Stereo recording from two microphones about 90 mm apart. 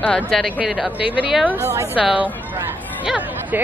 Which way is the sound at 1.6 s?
30° right (ahead or behind).